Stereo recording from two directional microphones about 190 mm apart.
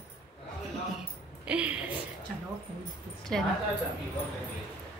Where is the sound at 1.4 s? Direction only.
5° right (ahead or behind).